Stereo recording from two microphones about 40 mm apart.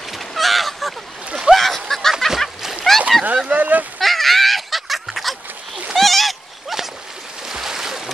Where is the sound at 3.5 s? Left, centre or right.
Right.